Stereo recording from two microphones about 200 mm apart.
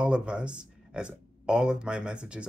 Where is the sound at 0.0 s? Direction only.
5° right (ahead or behind).